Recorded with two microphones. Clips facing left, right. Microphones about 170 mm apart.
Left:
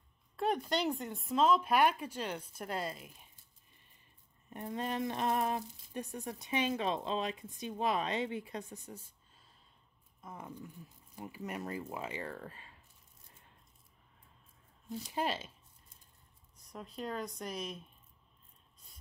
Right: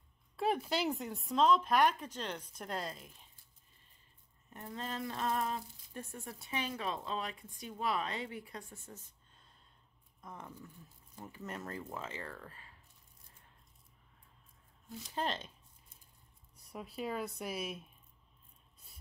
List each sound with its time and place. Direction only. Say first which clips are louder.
0.4 s speech: left 1 dB; 5° right (ahead or behind)
4.5 s speech: left 5 dB; 15° left (ahead or behind)
15.1 s speech: left 2 dB; 5° left (ahead or behind)
16.5 s speech: right 1 dB; 10° right (ahead or behind)